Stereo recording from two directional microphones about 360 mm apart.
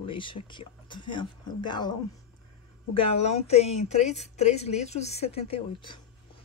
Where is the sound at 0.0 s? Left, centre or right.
Centre.